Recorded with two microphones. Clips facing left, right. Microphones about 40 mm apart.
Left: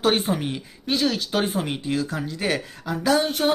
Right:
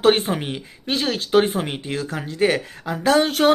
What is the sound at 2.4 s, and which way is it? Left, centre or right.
Speech, right.